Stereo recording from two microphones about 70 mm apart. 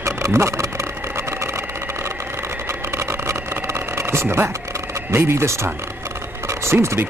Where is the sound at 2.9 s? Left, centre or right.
Right.